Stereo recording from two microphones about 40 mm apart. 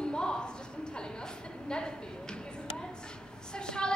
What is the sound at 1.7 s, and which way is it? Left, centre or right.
Speech, centre.